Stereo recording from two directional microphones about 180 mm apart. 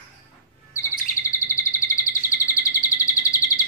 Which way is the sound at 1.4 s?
15° left (ahead or behind).